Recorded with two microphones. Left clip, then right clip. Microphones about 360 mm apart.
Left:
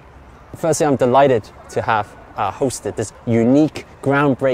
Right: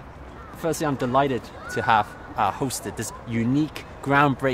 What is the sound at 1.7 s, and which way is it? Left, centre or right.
A man's voice, left.